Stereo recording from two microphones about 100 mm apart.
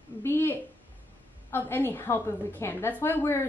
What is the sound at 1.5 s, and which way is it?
A woman's voice, 20° left (ahead or behind).